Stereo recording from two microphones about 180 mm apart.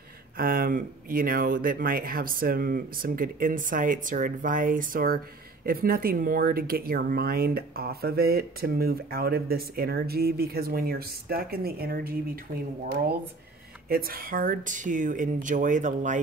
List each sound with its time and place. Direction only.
0.4 s speech: 55° right (ahead or behind)